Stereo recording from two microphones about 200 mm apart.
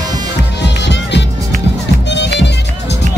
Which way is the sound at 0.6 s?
60° left (ahead or behind).